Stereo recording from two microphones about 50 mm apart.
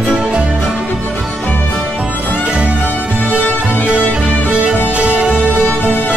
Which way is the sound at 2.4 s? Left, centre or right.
Right.